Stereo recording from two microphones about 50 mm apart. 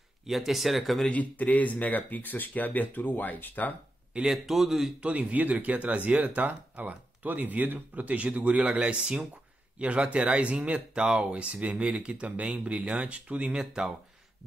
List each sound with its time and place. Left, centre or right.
0.3 s speech: centre
1.1 s speech: left
4.1 s speech: centre
4.5 s speech: centre
5.0 s speech: right